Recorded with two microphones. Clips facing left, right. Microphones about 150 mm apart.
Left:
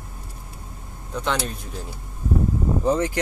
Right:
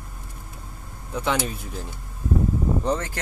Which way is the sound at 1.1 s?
5° right (ahead or behind).